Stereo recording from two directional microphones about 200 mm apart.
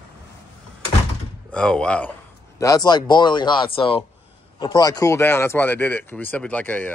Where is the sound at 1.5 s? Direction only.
5° left (ahead or behind).